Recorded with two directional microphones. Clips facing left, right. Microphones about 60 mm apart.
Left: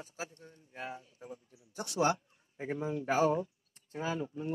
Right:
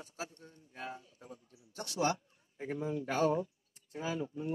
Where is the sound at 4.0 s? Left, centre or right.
Left.